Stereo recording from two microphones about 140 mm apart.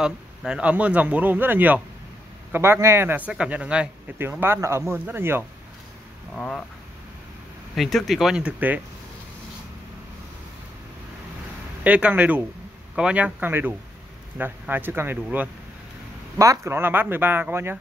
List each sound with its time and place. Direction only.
0.0 s speech: 5° right (ahead or behind)
6.3 s speech: 5° left (ahead or behind)
7.7 s speech: centre (ahead or behind)
11.8 s speech: 10° right (ahead or behind)
16.3 s speech: 20° right (ahead or behind)